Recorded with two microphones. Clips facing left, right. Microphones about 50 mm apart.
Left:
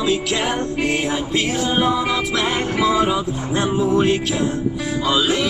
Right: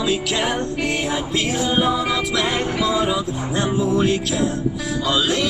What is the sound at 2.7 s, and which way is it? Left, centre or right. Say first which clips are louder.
Music: left 2 dB; centre.